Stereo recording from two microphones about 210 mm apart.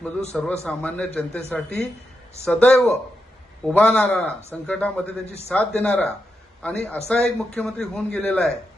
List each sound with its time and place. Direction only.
0.3 s a man's voice: 5° left (ahead or behind)
5.2 s a man's voice: 30° left (ahead or behind)
5.5 s a man's voice: 5° left (ahead or behind)